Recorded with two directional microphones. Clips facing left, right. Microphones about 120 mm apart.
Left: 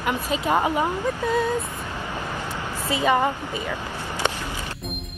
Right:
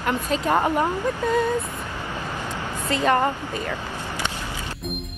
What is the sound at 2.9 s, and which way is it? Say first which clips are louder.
Speech: even; 10° left (ahead or behind).